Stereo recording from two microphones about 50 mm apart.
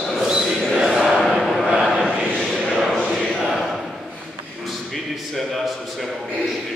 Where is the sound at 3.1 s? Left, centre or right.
Centre.